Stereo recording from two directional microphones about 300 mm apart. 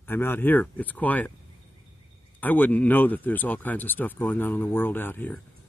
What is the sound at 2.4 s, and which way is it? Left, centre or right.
Speech, centre.